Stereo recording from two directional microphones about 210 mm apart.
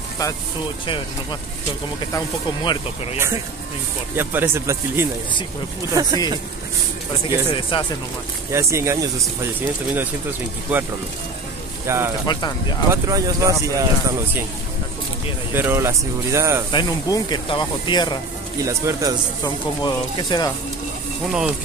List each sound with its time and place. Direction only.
2.1 s speech: 20° left (ahead or behind)
4.2 s speech: 10° right (ahead or behind)
7.2 s speech: 25° left (ahead or behind)
8.5 s speech: 15° right (ahead or behind)
11.9 s speech: 15° right (ahead or behind)
12.3 s speech: 20° left (ahead or behind)
12.9 s speech: 15° right (ahead or behind)
15.5 s speech: 10° right (ahead or behind)
16.7 s speech: 20° left (ahead or behind)
18.6 s speech: 15° right (ahead or behind)
19.4 s speech: 20° left (ahead or behind)
21.3 s speech: 5° right (ahead or behind)